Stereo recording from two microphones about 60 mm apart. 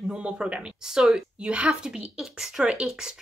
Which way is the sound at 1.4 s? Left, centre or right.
Centre.